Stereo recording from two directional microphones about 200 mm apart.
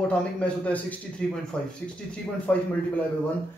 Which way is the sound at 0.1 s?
5° left (ahead or behind).